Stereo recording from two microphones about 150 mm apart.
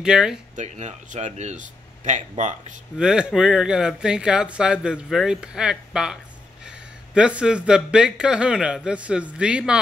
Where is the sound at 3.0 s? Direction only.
5° right (ahead or behind).